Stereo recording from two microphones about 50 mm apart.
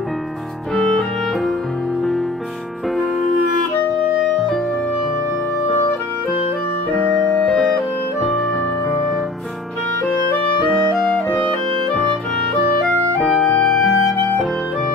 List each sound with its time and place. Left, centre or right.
0.7 s clarinet: centre
7.4 s music: centre
10.6 s music: centre
11.4 s clarinet: centre
13.5 s music: centre